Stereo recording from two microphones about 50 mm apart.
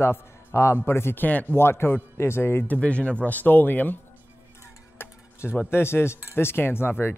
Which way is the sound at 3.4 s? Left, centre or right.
Left.